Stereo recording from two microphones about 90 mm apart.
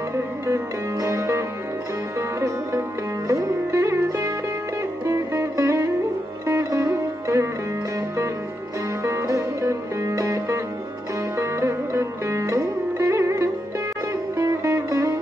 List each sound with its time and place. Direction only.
0.1 s music: 35° right (ahead or behind)
2.1 s sitar: 35° right (ahead or behind)
5.0 s music: 30° right (ahead or behind)
6.4 s sitar: 35° right (ahead or behind)
9.0 s music: 35° right (ahead or behind)
11.3 s sitar: 30° right (ahead or behind)
14.3 s music: 35° right (ahead or behind)